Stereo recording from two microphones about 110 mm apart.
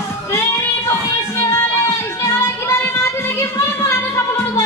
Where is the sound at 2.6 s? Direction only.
20° left (ahead or behind).